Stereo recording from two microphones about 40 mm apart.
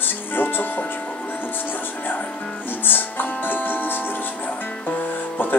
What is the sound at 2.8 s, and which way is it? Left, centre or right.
Music, left.